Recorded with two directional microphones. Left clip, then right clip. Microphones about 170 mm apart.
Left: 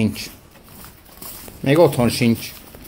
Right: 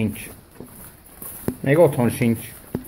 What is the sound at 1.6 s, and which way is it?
Speech, 5° left (ahead or behind).